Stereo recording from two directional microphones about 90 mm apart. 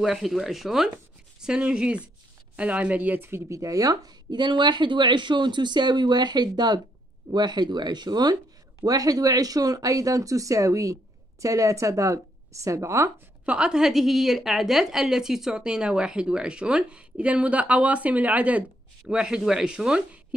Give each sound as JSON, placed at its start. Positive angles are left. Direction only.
{"t": 0.0, "sound": "a woman's voice", "side_deg": -5}
{"t": 13.5, "sound": "a woman's voice", "side_deg": -10}